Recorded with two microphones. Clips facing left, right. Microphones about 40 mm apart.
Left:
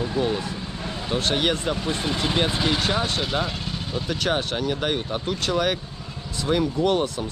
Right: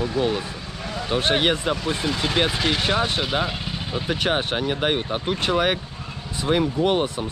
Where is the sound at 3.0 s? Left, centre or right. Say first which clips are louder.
Right 2 dB; centre.